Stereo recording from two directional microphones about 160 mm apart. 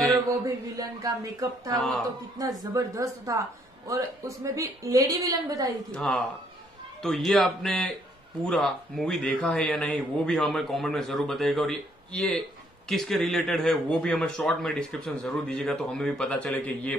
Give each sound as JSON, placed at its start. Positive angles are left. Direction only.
{"t": 0.7, "sound": "speech", "side_deg": -20}
{"t": 1.8, "sound": "a man's voice", "side_deg": 5}
{"t": 2.0, "sound": "speech", "side_deg": -20}
{"t": 5.9, "sound": "a man's voice", "side_deg": 5}